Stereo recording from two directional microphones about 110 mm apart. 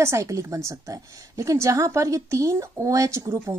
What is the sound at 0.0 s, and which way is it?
A woman's voice, 25° right (ahead or behind).